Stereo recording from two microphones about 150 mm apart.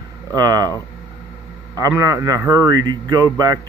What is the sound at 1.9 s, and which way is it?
A man's voice, 20° right (ahead or behind).